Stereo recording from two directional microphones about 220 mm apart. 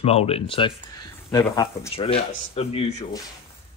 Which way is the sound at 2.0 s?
25° left (ahead or behind).